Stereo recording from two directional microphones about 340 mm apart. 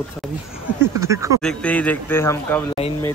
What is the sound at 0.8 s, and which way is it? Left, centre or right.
Speech, centre.